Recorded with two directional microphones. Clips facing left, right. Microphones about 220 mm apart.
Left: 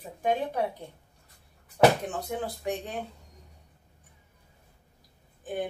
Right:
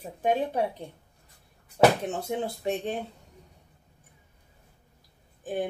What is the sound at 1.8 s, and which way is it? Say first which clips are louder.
Speech: even; 25° right (ahead or behind).